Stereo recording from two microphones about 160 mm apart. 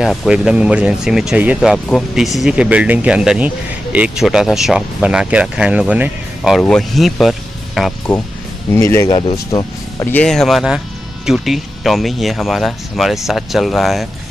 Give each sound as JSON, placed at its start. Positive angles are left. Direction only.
{"t": 0.0, "sound": "speech", "side_deg": 0}
{"t": 8.7, "sound": "speech", "side_deg": 20}
{"t": 10.1, "sound": "speech", "side_deg": 5}